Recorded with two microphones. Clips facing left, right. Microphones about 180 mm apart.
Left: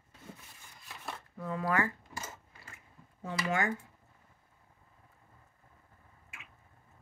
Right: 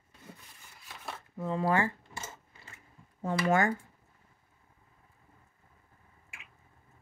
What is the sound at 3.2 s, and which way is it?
Speech, 45° right (ahead or behind).